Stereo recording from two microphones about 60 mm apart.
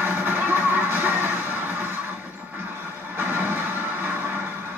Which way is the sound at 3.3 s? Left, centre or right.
Right.